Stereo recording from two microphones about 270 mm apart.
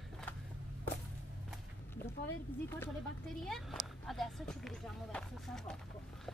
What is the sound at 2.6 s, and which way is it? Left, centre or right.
Speech, centre.